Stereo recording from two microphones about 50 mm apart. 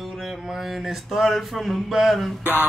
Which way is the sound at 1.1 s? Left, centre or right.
Centre.